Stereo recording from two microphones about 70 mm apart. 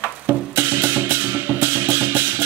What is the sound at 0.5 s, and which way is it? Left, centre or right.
Music, right.